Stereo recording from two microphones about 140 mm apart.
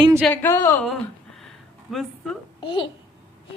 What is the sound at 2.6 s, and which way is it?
Babbling, 35° left (ahead or behind).